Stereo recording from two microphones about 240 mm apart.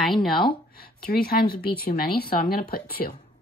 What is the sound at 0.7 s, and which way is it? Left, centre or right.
A woman's voice, left.